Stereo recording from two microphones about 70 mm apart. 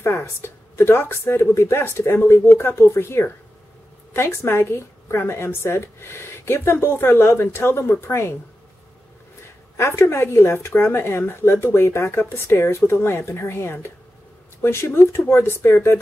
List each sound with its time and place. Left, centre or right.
0.0 s a woman's voice: left
9.8 s a woman's voice: left